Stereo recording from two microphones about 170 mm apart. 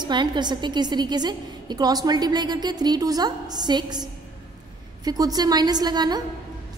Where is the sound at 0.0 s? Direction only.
25° right (ahead or behind).